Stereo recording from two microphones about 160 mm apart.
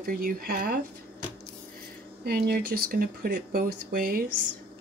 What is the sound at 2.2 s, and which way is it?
Speech, 70° right (ahead or behind).